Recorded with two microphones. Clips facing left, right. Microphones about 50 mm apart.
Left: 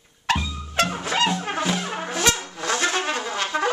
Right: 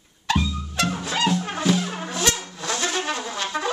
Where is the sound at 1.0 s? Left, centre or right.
Left.